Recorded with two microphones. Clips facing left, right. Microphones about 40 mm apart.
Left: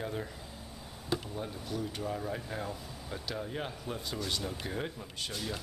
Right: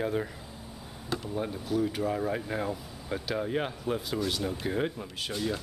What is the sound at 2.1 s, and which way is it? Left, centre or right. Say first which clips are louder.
Speech: right 6 dB; right.